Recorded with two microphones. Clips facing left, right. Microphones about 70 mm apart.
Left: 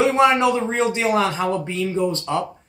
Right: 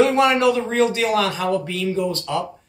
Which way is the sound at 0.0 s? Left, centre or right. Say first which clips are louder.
Even; left.